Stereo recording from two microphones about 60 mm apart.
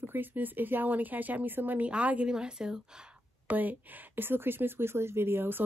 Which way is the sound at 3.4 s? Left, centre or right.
Right.